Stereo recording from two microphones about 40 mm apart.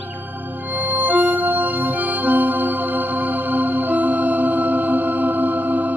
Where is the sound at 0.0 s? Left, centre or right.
Right.